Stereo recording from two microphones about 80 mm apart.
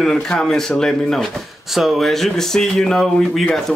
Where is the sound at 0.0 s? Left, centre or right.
Centre.